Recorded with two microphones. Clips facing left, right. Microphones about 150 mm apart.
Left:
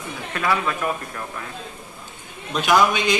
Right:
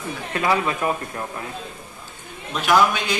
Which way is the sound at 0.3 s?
25° right (ahead or behind).